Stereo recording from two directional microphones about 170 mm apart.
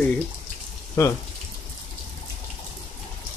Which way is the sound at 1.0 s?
15° left (ahead or behind).